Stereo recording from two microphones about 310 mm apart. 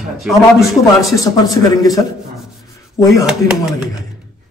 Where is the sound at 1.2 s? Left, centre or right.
Centre.